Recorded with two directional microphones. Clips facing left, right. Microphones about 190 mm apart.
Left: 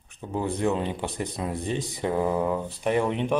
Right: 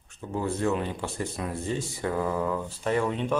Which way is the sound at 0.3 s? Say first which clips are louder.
Left 1 dB; 20° left (ahead or behind).